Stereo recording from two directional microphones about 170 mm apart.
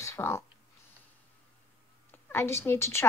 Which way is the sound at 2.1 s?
15° left (ahead or behind).